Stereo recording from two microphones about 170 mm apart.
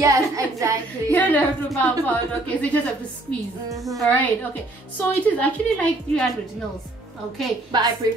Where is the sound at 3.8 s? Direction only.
Centre (ahead or behind).